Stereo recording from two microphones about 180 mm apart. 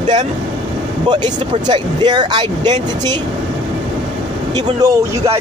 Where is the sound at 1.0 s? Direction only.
25° right (ahead or behind).